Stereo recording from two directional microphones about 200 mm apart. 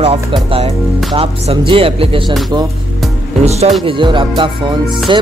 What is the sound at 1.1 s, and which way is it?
Speech, 25° right (ahead or behind).